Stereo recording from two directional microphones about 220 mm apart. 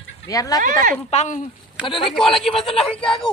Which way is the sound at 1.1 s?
30° left (ahead or behind).